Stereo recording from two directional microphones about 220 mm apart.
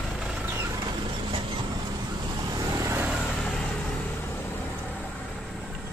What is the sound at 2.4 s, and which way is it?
Vehicle, 15° right (ahead or behind).